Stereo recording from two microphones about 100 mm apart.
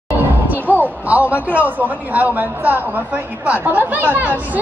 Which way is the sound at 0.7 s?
15° right (ahead or behind).